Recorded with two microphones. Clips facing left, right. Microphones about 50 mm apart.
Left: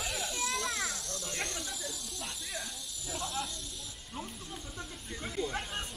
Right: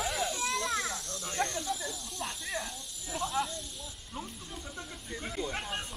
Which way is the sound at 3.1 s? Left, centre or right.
Centre.